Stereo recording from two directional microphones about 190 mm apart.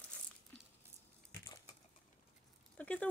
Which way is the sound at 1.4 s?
20° left (ahead or behind).